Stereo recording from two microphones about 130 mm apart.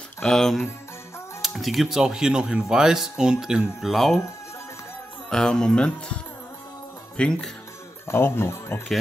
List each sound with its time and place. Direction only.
0.2 s speech: 5° left (ahead or behind)
5.3 s speech: 5° left (ahead or behind)
7.2 s speech: 5° left (ahead or behind)
8.1 s speech: 20° left (ahead or behind)